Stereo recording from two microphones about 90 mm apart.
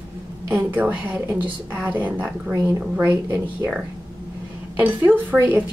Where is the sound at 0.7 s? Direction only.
20° right (ahead or behind).